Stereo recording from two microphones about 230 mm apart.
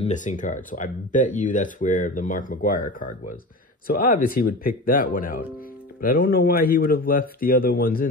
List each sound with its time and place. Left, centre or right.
0.0 s speech: left